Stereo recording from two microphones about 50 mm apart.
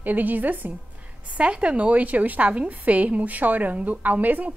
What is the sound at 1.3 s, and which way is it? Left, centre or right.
A woman's voice, right.